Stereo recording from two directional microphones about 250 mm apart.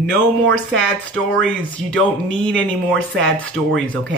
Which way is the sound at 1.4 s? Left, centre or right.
Centre.